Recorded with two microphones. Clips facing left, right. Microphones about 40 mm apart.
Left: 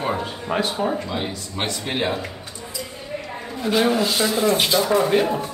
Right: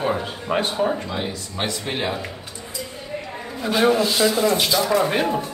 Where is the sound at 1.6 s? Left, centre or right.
Centre.